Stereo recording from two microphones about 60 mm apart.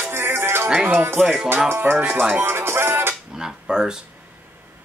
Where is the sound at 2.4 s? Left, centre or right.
Right.